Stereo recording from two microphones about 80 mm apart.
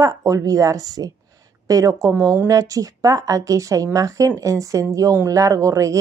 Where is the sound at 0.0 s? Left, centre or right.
Right.